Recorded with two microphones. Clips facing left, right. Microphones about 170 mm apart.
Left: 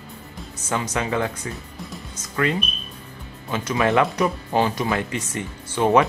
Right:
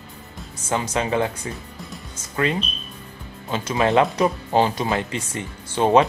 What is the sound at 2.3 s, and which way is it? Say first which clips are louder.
Speech: even; 25° right (ahead or behind).